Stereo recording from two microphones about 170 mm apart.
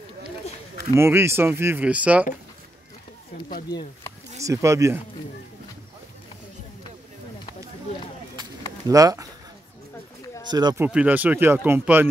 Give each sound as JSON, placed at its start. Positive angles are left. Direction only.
{"t": 0.9, "sound": "speech", "side_deg": -15}
{"t": 4.4, "sound": "speech", "side_deg": -20}
{"t": 8.8, "sound": "speech", "side_deg": -20}
{"t": 10.5, "sound": "speech", "side_deg": -25}
{"t": 10.8, "sound": "speech", "side_deg": -10}